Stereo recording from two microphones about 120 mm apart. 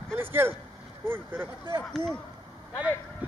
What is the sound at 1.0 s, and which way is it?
Vehicle, 15° right (ahead or behind).